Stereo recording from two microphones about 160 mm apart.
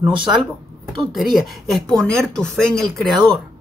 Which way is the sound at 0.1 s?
30° right (ahead or behind).